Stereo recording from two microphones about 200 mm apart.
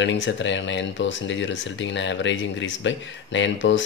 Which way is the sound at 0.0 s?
65° left (ahead or behind).